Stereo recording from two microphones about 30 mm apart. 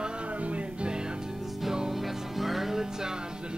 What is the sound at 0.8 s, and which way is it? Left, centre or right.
Music, right.